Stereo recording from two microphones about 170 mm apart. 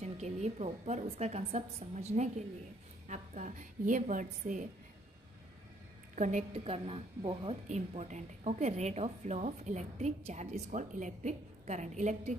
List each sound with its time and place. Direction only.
0.0 s a woman's voice: 40° right (ahead or behind)
6.1 s a woman's voice: 45° right (ahead or behind)
6.5 s speech: 35° right (ahead or behind)